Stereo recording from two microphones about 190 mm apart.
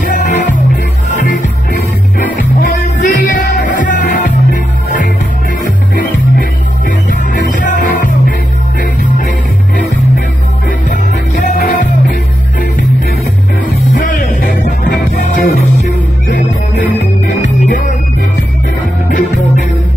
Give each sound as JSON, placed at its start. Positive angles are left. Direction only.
{"t": 0.0, "sound": "music", "side_deg": 45}
{"t": 2.1, "sound": "music", "side_deg": 45}
{"t": 7.1, "sound": "music", "side_deg": 45}
{"t": 10.9, "sound": "music", "side_deg": 40}
{"t": 13.9, "sound": "music", "side_deg": 45}
{"t": 17.6, "sound": "music", "side_deg": 45}
{"t": 19.1, "sound": "music", "side_deg": 40}